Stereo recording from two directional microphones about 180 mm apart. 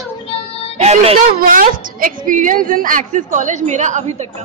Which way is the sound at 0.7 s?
35° right (ahead or behind).